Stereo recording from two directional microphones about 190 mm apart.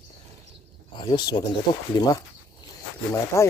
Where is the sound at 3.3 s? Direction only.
15° left (ahead or behind).